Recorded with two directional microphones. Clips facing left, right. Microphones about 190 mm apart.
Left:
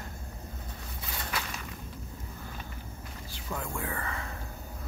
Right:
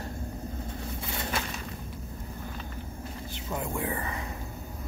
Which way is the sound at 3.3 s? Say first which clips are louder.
Right 3 dB; 20° right (ahead or behind).